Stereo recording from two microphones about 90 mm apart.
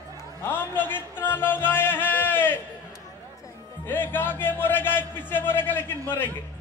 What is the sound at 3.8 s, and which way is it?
A man's voice, 25° left (ahead or behind).